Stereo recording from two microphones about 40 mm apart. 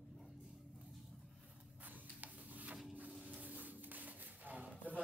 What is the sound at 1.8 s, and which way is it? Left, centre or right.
Printer, right.